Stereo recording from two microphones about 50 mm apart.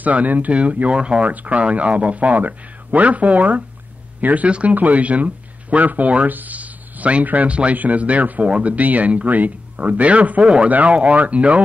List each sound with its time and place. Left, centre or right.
0.0 s speech: right